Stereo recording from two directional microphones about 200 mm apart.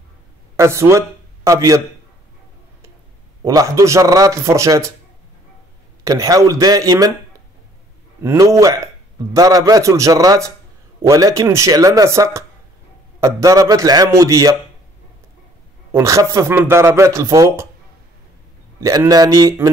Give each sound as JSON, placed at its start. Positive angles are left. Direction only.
{"t": 0.6, "sound": "a man's voice", "side_deg": -15}
{"t": 3.4, "sound": "speech", "side_deg": -15}
{"t": 6.0, "sound": "speech", "side_deg": -15}
{"t": 8.2, "sound": "speech", "side_deg": -15}
{"t": 15.9, "sound": "speech", "side_deg": -15}
{"t": 18.8, "sound": "speech", "side_deg": -15}